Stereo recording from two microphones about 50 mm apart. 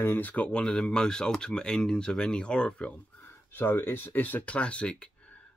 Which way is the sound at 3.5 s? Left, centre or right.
Left.